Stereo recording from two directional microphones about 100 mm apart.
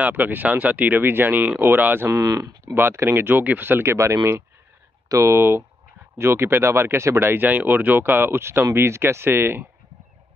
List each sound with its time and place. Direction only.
0.0 s speech: 20° right (ahead or behind)
2.0 s speech: 35° right (ahead or behind)
2.7 s speech: 25° right (ahead or behind)